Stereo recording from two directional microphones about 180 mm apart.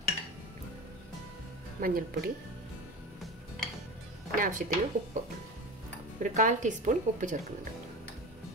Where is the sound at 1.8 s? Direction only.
55° right (ahead or behind).